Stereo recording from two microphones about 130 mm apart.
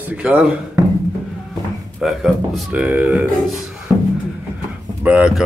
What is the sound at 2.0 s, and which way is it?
Speech, centre (ahead or behind).